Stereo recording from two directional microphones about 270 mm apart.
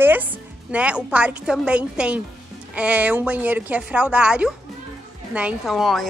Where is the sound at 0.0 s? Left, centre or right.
Centre.